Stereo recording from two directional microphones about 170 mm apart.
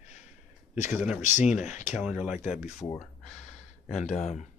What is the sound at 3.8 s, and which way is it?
Speech, 40° left (ahead or behind).